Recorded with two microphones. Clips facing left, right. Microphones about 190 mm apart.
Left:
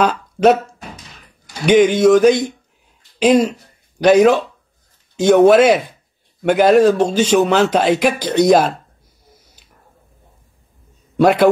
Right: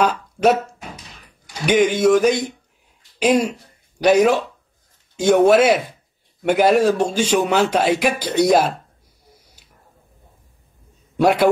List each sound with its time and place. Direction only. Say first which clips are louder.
0.0 s a sound: left 3 dB; 10° right (ahead or behind)
1.7 s speech: left 4 dB; 10° right (ahead or behind)
11.1 s a man's voice: left 3 dB; 10° right (ahead or behind)